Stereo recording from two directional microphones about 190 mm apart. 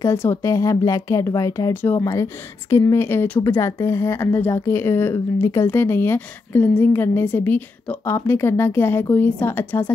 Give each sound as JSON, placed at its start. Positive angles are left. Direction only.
{"t": 0.0, "sound": "speech", "side_deg": 15}